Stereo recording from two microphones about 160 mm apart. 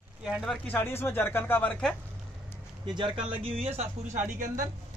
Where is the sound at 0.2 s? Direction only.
5° right (ahead or behind).